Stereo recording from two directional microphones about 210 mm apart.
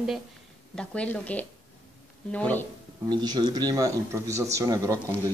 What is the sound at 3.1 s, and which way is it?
Speech, 20° right (ahead or behind).